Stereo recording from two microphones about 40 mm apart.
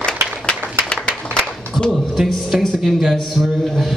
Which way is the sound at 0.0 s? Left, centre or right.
Left.